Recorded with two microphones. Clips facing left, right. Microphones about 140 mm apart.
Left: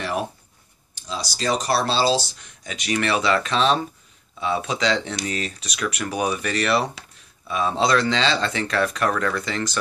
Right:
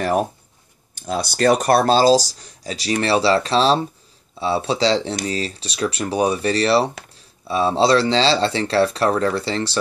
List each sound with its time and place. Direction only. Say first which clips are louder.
0.0 s speech: right 7 dB; 45° right (ahead or behind)
0.9 s speech: right 8 dB; 55° right (ahead or behind); by 9.8 s 30° right (ahead or behind)